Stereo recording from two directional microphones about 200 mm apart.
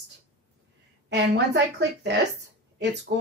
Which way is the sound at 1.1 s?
60° right (ahead or behind).